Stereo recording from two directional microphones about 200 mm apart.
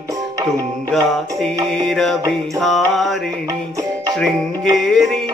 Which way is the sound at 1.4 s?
Centre (ahead or behind).